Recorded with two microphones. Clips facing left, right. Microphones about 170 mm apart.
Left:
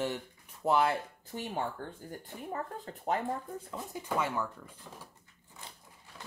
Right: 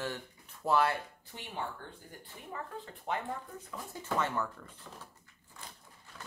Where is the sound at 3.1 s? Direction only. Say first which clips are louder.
Left 4 dB; 45° left (ahead or behind).